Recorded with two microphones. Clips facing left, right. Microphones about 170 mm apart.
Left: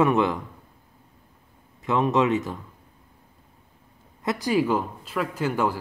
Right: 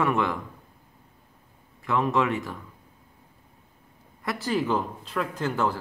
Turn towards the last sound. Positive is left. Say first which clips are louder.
# left 2 dB
turn(degrees=10)  # may be behind; listen again after turning